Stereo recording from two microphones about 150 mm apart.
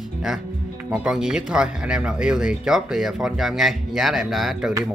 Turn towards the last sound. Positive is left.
turn(degrees=0)  # may be behind; listen again after turning